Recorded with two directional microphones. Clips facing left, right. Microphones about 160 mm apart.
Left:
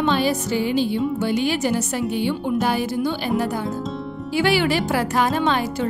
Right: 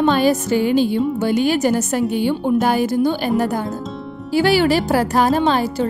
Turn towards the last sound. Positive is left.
turn(degrees=-35)  # may be behind; listen again after turning